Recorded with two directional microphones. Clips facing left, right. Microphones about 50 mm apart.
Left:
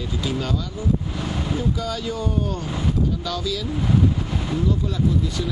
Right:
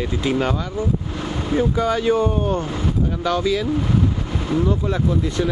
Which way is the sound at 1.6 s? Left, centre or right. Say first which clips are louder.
Right 11 dB; right.